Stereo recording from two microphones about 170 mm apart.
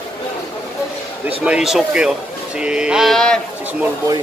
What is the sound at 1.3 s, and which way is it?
Speech, 5° right (ahead or behind).